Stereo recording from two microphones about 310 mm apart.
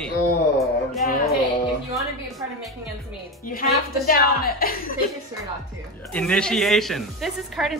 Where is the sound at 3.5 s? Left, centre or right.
Left.